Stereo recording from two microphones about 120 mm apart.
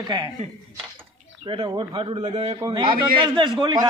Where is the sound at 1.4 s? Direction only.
45° right (ahead or behind).